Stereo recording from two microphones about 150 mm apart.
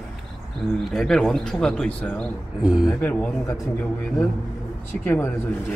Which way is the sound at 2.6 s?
5° right (ahead or behind).